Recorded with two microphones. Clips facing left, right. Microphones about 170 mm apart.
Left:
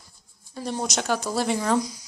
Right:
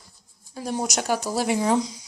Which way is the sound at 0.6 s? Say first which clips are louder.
Right 1 dB; 10° right (ahead or behind).